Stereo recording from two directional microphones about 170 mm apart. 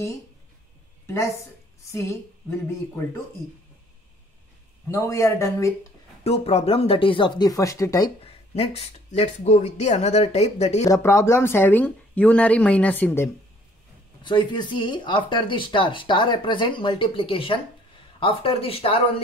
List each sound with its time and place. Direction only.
1.0 s speech: 15° left (ahead or behind)
4.8 s speech: 15° left (ahead or behind)
6.2 s speech: 35° left (ahead or behind); by 8.1 s 20° left (ahead or behind)
8.2 s speech: 35° left (ahead or behind)
10.9 s speech: 15° left (ahead or behind)
14.2 s speech: 25° left (ahead or behind)